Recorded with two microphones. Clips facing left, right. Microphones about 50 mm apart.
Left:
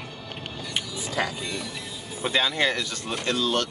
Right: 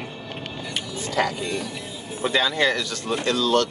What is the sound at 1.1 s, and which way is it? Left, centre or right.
Speech, centre.